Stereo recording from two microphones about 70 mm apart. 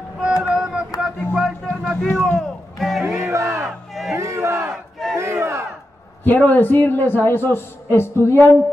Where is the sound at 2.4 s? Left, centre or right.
Centre.